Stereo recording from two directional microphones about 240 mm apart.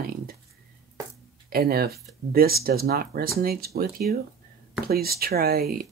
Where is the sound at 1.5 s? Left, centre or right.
Right.